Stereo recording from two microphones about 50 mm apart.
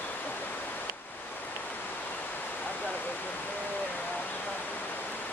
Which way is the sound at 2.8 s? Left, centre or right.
Left.